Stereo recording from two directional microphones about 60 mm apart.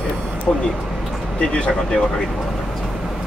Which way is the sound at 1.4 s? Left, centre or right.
Centre.